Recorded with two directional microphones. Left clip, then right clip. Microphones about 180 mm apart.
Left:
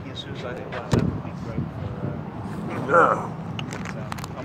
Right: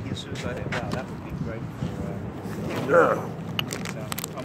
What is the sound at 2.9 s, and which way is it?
Speech, 45° right (ahead or behind).